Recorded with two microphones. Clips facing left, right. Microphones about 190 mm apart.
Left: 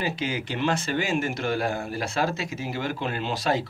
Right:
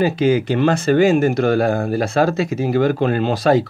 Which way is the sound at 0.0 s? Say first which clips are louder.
Right 13 dB; 50° right (ahead or behind).